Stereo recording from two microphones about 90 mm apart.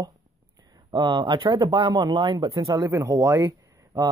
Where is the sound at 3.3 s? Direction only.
35° right (ahead or behind).